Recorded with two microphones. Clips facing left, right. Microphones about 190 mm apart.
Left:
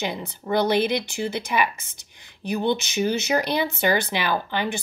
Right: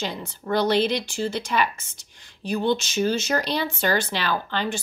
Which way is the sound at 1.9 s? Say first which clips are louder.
Left 1 dB; 60° left (ahead or behind).